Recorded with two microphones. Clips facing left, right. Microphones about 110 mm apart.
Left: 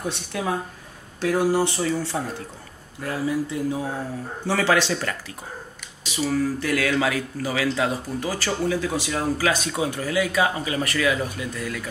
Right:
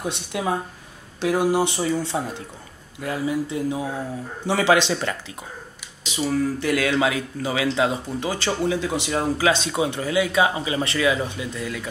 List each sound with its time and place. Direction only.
0.0 s speech: 15° right (ahead or behind)
6.6 s speech: 25° right (ahead or behind)